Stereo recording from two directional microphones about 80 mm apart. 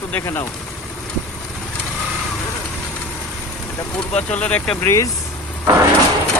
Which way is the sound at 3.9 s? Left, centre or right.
Centre.